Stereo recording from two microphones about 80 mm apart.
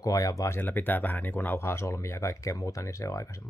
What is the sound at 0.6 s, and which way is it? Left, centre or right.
Speech, left.